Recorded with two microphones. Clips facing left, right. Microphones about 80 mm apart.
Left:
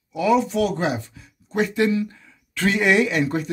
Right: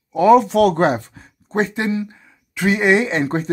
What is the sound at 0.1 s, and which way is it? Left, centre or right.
Speech, right.